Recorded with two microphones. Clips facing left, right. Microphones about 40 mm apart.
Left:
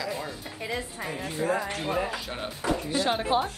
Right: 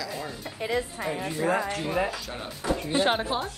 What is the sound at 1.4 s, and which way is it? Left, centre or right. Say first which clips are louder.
Speech: right 1 dB; right.